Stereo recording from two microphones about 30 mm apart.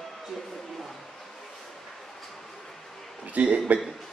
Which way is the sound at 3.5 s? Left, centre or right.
Right.